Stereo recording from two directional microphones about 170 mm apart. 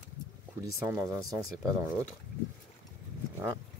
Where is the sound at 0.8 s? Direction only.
20° right (ahead or behind).